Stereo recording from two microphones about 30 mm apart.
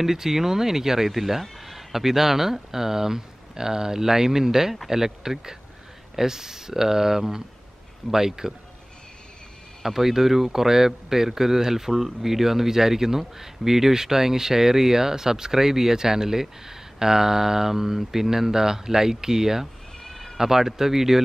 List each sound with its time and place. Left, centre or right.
0.0 s speech: centre
9.8 s speech: centre
20.0 s a sound: centre
20.3 s speech: centre